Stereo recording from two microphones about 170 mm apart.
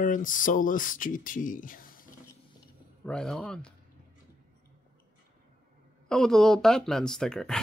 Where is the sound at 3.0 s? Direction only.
5° left (ahead or behind).